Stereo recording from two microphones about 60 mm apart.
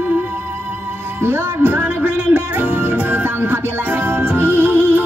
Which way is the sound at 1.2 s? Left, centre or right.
Right.